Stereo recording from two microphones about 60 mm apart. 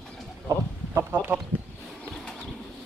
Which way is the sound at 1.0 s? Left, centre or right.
Right.